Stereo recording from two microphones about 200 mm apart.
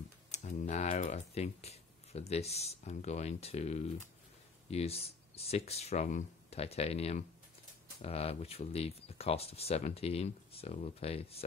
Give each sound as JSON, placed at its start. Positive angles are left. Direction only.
{"t": 0.3, "sound": "speech", "side_deg": 35}